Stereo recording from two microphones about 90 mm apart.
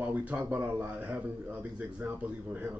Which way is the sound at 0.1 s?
15° right (ahead or behind).